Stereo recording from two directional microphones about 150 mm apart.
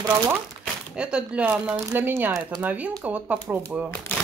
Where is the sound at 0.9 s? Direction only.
5° right (ahead or behind).